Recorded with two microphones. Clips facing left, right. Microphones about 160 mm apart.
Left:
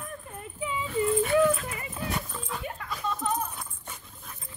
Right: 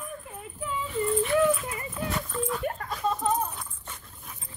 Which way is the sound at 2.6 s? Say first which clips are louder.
Right 4 dB; 40° right (ahead or behind).